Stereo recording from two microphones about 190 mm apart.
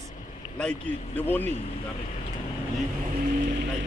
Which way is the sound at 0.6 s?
5° left (ahead or behind).